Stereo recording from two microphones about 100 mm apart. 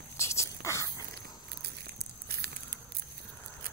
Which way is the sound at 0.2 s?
30° left (ahead or behind).